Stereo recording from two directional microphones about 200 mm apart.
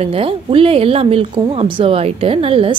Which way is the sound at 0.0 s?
25° right (ahead or behind).